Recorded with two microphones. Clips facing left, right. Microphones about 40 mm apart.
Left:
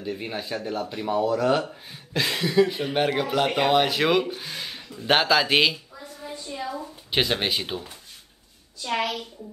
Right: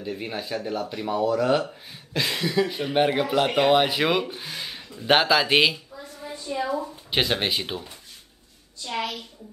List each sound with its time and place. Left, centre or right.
0.0 s speech: centre
6.6 s a sound: right
7.1 s speech: centre
8.8 s a woman's voice: left